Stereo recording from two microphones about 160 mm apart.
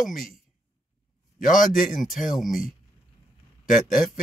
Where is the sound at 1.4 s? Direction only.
55° left (ahead or behind).